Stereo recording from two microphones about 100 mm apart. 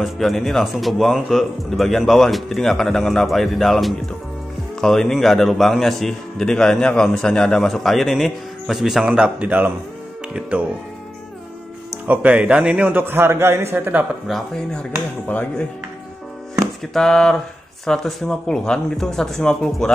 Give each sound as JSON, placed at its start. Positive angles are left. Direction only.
{"t": 0.0, "sound": "a man's voice", "side_deg": 0}
{"t": 12.1, "sound": "a man's voice", "side_deg": -15}
{"t": 14.2, "sound": "music", "side_deg": 5}
{"t": 16.8, "sound": "a man's voice", "side_deg": 5}